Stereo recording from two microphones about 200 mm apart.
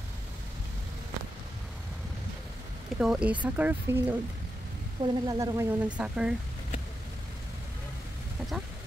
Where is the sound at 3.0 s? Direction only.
5° right (ahead or behind).